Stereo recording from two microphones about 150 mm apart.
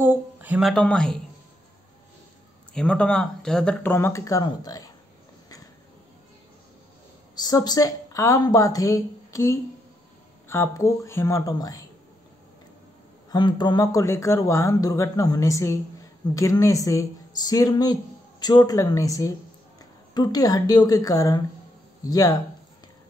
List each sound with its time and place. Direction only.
0.0 s speech: 10° right (ahead or behind); by 1.2 s 5° left (ahead or behind)
2.7 s speech: 5° left (ahead or behind); by 4.9 s 25° left (ahead or behind)
7.3 s speech: 25° left (ahead or behind)
13.3 s speech: 30° left (ahead or behind)